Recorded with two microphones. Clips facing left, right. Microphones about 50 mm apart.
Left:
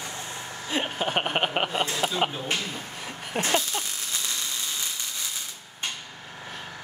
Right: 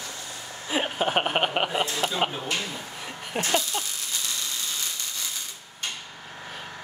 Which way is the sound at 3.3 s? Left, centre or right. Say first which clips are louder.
Left 1 dB; centre.